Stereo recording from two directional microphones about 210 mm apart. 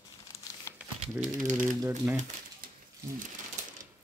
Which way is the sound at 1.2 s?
15° right (ahead or behind).